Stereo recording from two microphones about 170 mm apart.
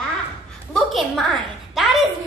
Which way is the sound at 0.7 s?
Centre (ahead or behind).